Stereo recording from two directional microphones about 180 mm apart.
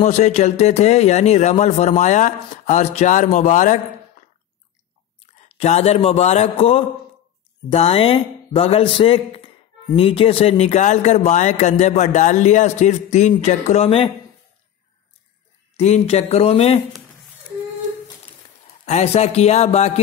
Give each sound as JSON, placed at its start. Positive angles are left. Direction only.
{"t": 0.0, "sound": "a man's voice", "side_deg": 40}
{"t": 5.2, "sound": "a man's voice", "side_deg": 40}
{"t": 15.7, "sound": "a man's voice", "side_deg": 35}
{"t": 18.9, "sound": "a man's voice", "side_deg": 40}